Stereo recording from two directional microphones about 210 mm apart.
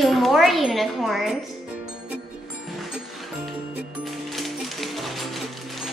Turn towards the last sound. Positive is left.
turn(degrees=0)  # may be behind; listen again after turning